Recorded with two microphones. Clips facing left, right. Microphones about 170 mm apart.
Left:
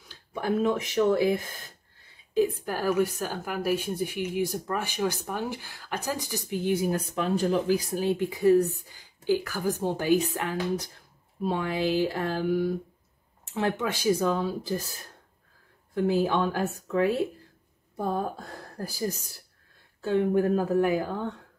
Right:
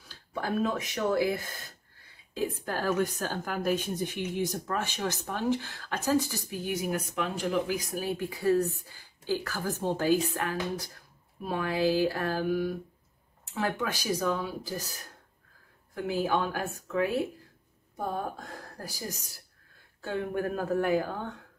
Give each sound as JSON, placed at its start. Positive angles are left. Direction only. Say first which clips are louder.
{"t": 0.1, "sound": "a woman's voice", "louder": "left 4 dB", "side_deg": 20}
{"t": 15.9, "sound": "a woman's voice", "louder": "left 4 dB", "side_deg": 30}
{"t": 18.4, "sound": "speech", "louder": "left 4 dB", "side_deg": 35}